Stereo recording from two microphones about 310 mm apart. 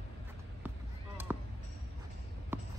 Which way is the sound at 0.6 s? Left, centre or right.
Centre.